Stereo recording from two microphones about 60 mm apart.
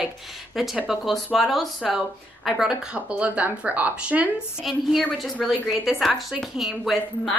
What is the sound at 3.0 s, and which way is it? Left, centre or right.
Speech, right.